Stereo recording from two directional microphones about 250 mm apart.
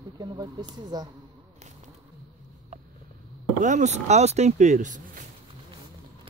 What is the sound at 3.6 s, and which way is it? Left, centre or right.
Speech, right.